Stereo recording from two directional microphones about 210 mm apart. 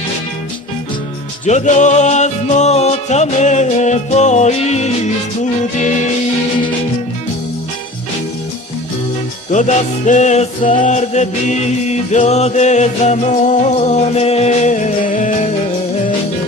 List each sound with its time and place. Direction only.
1.4 s music: 35° left (ahead or behind)
9.5 s music: 35° left (ahead or behind)